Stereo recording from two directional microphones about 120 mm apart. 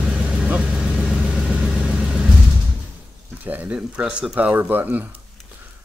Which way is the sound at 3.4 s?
15° right (ahead or behind).